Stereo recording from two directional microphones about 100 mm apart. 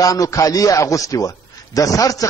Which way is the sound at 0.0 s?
35° left (ahead or behind).